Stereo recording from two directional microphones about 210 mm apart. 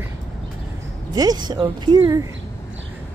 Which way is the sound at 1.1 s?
20° right (ahead or behind).